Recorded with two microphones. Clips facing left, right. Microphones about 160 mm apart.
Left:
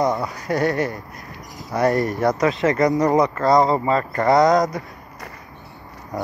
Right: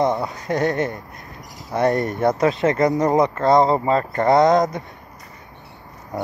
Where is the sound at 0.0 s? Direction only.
20° right (ahead or behind).